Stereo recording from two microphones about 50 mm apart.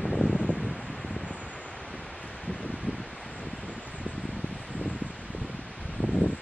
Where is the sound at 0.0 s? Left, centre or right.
Centre.